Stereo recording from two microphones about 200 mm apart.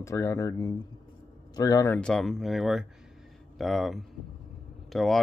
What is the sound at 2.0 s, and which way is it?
Speech, centre (ahead or behind).